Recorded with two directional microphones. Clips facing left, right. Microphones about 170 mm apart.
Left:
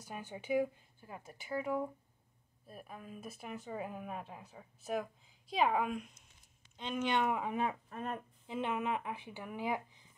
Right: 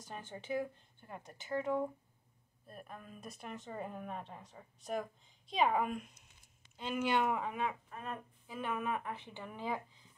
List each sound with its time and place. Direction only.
0.0 s a woman's voice: 10° left (ahead or behind)
7.5 s speech: 40° left (ahead or behind)
8.5 s speech: 25° left (ahead or behind)